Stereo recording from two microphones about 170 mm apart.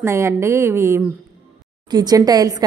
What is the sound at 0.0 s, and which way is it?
A woman's voice, 15° right (ahead or behind).